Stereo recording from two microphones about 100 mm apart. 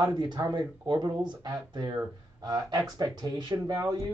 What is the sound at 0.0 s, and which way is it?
Speech, 45° right (ahead or behind).